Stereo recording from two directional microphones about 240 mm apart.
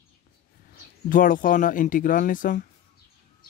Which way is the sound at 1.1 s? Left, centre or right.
Left.